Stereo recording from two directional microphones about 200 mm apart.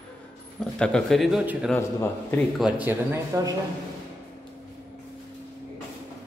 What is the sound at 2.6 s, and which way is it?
Speech, 10° right (ahead or behind).